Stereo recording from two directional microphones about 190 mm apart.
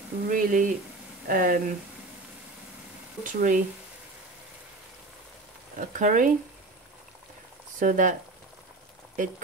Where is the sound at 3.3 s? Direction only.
45° right (ahead or behind).